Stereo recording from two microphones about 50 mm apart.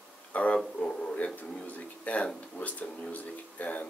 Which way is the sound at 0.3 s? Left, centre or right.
Left.